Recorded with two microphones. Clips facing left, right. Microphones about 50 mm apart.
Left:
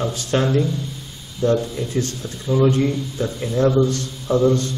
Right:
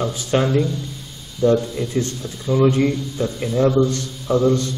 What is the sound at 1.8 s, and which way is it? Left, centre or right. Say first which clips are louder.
Speech: right 1 dB; right.